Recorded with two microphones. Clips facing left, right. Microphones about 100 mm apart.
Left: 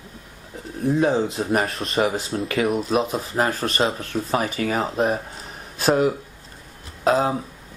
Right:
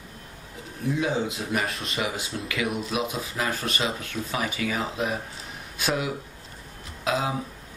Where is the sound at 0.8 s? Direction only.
40° left (ahead or behind).